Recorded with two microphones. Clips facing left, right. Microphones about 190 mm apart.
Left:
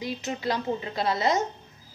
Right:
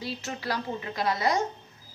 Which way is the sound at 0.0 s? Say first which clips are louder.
Left 4 dB; 15° left (ahead or behind).